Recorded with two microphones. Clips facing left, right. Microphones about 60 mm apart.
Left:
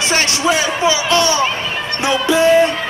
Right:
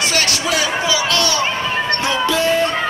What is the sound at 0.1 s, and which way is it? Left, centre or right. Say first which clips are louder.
Speech: left 3 dB; left.